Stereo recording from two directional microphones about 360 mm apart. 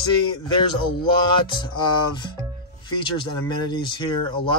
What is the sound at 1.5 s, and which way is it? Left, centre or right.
Speech, centre.